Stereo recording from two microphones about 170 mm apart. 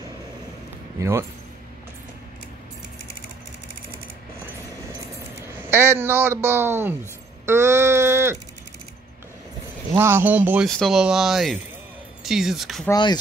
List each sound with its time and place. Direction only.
0.9 s speech: 15° right (ahead or behind)
5.6 s speech: 15° right (ahead or behind)
9.9 s speech: 15° right (ahead or behind)
12.9 s speech: 25° left (ahead or behind)